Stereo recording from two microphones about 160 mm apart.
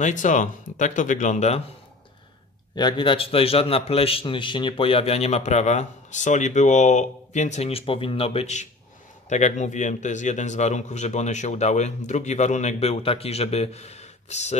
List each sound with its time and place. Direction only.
0.0 s speech: 50° left (ahead or behind)
2.7 s a man's voice: 25° left (ahead or behind); by 14.6 s 45° left (ahead or behind)